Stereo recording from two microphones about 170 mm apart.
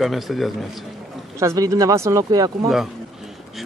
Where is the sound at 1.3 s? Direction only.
20° right (ahead or behind).